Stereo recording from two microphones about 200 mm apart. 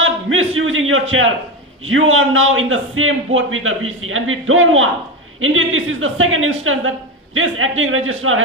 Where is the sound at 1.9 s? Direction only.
90° right.